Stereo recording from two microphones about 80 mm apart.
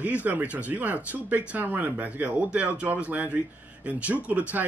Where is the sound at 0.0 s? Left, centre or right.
Centre.